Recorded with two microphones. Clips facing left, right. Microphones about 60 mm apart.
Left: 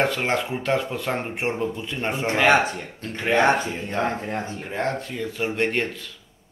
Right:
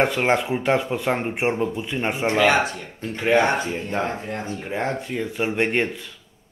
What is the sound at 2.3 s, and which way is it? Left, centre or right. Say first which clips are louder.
Speech: left 1 dB; left.